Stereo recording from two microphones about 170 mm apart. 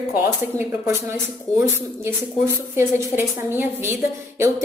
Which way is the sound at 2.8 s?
15° right (ahead or behind).